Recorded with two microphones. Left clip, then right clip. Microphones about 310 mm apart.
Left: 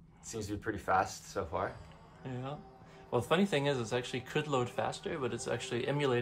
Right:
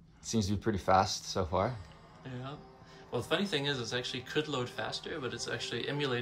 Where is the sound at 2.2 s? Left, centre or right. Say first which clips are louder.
Left 2 dB; centre.